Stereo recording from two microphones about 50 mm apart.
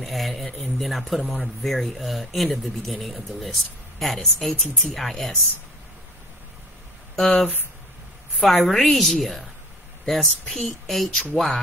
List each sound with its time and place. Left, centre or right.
0.0 s speech: centre
7.2 s speech: centre
8.5 s speech: centre